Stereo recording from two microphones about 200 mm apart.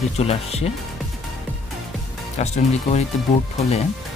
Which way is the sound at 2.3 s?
35° left (ahead or behind).